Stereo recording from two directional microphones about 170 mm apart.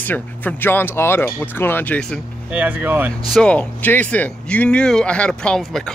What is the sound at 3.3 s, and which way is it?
Speech, 5° left (ahead or behind).